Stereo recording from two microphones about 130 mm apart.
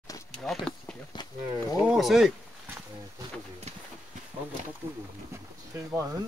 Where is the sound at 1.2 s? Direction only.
35° left (ahead or behind).